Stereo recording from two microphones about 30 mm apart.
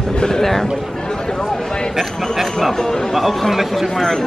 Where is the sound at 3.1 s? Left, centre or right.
Centre.